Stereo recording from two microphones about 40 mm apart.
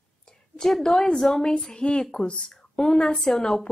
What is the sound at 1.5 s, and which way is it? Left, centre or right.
A woman's voice, left.